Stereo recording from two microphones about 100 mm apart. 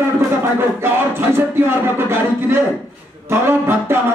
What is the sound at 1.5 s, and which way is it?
Speech, 25° right (ahead or behind).